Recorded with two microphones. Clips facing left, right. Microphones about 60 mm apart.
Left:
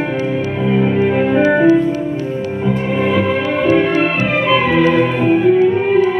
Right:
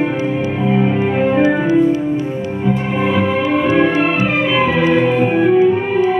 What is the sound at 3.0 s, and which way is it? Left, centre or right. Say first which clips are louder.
Music: left 1 dB; centre.